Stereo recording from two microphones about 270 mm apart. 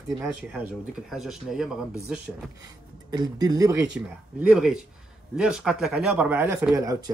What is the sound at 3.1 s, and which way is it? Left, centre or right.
Speech, centre.